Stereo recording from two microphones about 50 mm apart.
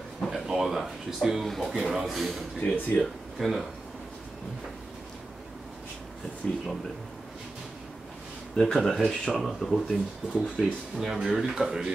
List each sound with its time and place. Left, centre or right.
0.2 s a sound: centre
0.6 s speech: centre
1.8 s speech: centre
6.4 s speech: left
8.7 s speech: centre
9.8 s speech: centre
10.6 s speech: centre